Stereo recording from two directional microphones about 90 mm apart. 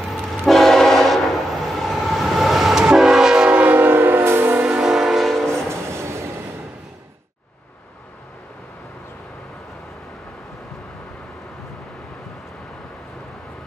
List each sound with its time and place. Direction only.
0.5 s train: 5° left (ahead or behind); by 4.6 s 25° right (ahead or behind)
4.6 s train: 15° right (ahead or behind)
5.7 s train: 30° right (ahead or behind)